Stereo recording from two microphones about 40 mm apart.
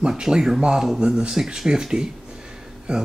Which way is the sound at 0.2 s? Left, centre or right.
Centre.